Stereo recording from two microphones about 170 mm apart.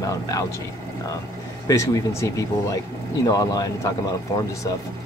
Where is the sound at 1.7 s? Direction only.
15° left (ahead or behind).